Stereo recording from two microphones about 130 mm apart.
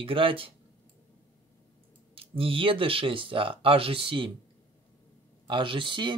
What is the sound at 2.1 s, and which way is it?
Speech, 45° right (ahead or behind).